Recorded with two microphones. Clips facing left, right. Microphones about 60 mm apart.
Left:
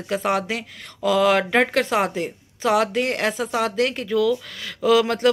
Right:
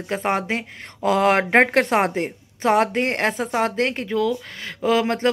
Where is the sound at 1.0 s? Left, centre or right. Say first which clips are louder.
Even; right.